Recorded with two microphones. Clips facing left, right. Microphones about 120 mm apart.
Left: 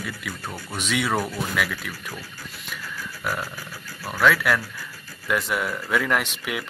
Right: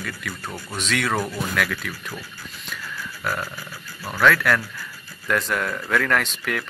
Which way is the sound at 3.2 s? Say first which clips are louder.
Right 1 dB; 5° left (ahead or behind).